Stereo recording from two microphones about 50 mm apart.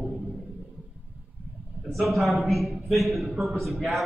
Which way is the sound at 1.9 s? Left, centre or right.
Centre.